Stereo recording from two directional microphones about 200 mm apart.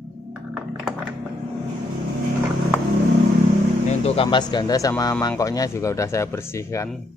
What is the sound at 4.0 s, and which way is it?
Speech, 30° left (ahead or behind).